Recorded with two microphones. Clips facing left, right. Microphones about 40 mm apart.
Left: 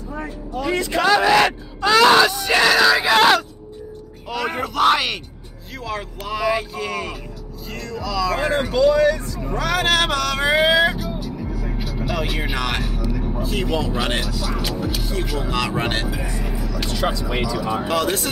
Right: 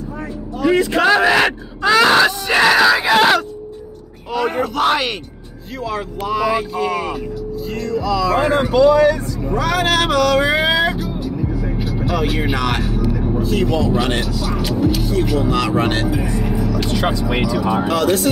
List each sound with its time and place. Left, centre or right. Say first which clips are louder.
0.6 s speech: right 6 dB; centre
8.4 s speech: right 5 dB; right
9.6 s music: right 2 dB; centre
12.1 s speech: right 5 dB; centre
13.1 s vehicle: right 5 dB; centre
13.4 s speech: right 5 dB; centre
15.0 s music: right 7 dB; centre
15.3 s speech: right 4 dB; centre
16.2 s speech: right 7 dB; centre
16.9 s speech: right 1 dB; right
17.4 s speech: right 5 dB; centre
17.8 s speech: right 5 dB; centre